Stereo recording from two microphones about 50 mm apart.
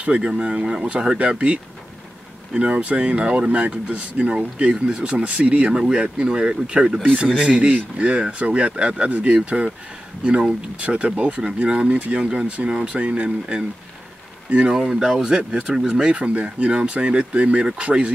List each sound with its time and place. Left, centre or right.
0.0 s speech: right
2.5 s speech: right
10.8 s speech: right
14.7 s speech: centre; by 18.1 s right